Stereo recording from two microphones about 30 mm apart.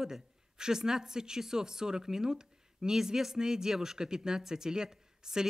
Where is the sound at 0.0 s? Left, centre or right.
Centre.